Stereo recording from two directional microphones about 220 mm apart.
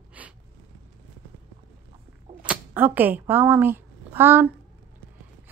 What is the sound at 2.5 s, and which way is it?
A woman's voice, 10° right (ahead or behind).